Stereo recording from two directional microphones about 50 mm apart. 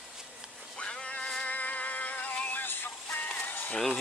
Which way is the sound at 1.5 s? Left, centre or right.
Left.